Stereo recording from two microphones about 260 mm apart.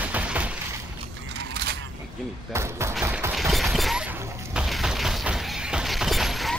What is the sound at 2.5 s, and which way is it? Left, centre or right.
Speech, centre.